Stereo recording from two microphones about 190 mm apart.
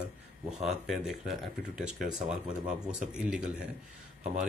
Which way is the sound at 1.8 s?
Centre (ahead or behind).